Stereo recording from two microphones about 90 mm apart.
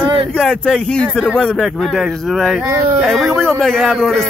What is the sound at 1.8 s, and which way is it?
Speech, centre (ahead or behind).